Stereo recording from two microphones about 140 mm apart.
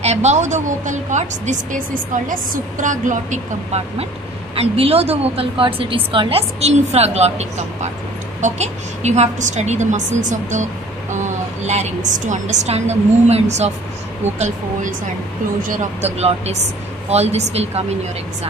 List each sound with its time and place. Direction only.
0.0 s a woman's voice: 55° right (ahead or behind)
4.6 s a woman's voice: 45° right (ahead or behind)
14.4 s speech: 65° right (ahead or behind)
16.0 s a woman's voice: 50° right (ahead or behind)